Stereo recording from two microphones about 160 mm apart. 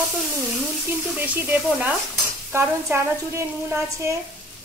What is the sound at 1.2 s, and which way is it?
Speech, 10° right (ahead or behind).